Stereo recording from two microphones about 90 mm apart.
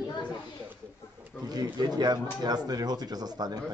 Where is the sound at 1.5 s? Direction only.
45° right (ahead or behind).